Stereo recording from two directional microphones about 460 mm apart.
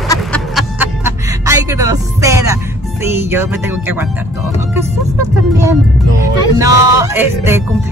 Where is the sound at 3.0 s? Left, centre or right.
Centre.